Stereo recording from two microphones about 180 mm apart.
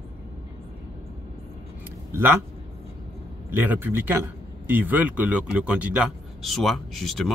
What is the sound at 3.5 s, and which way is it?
A man's voice, 10° right (ahead or behind).